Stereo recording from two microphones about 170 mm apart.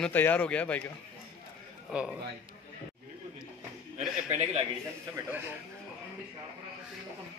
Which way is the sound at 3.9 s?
40° right (ahead or behind).